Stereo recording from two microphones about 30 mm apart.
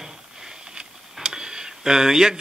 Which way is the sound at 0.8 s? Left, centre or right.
Right.